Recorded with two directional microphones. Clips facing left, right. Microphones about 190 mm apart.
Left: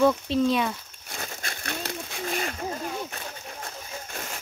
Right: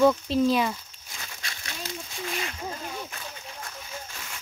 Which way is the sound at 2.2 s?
45° left (ahead or behind).